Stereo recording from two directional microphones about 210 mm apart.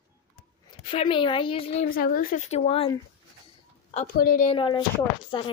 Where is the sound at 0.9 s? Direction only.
25° left (ahead or behind).